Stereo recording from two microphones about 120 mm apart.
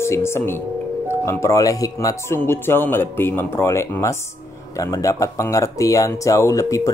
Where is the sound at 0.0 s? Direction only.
20° left (ahead or behind).